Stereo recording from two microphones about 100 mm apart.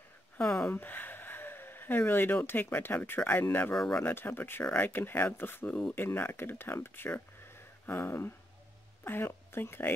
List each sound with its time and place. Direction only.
0.4 s speech: 10° left (ahead or behind)
3.7 s speech: 5° left (ahead or behind)
4.0 s a woman's voice: 20° left (ahead or behind)